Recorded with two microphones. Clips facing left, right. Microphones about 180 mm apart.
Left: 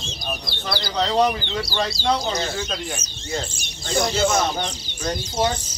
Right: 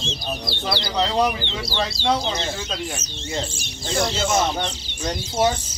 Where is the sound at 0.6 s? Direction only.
5° right (ahead or behind).